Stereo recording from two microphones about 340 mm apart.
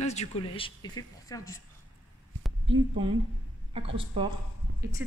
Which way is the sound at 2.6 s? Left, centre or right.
Centre.